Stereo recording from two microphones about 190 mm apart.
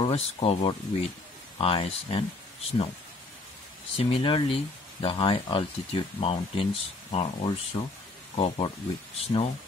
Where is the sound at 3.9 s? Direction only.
25° left (ahead or behind).